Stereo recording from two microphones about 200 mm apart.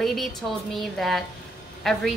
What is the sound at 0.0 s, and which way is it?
A woman's voice, centre (ahead or behind).